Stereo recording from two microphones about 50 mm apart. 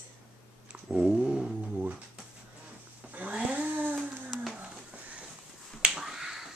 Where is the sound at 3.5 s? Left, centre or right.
Right.